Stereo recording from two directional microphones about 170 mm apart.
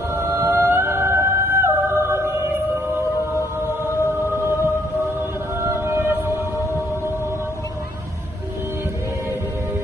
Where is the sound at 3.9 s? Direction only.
15° left (ahead or behind).